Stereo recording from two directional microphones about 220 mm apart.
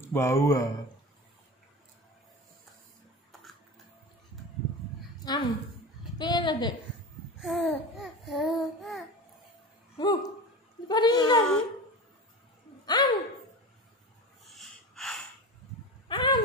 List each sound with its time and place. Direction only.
0.0 s speech: 10° left (ahead or behind)
5.2 s a woman's voice: 20° left (ahead or behind)
7.4 s babbling: centre (ahead or behind)
9.9 s a woman's voice: 20° left (ahead or behind)
12.8 s speech: 20° left (ahead or behind)
14.4 s snort: centre (ahead or behind)
16.1 s a sound: 20° left (ahead or behind)